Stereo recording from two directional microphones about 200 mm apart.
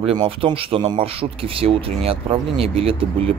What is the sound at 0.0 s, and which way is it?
Speech, 25° right (ahead or behind).